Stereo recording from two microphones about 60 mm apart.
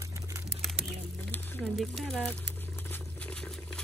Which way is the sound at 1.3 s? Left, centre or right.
Left.